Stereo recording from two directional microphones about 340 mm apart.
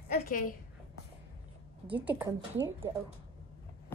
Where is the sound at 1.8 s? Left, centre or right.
Centre.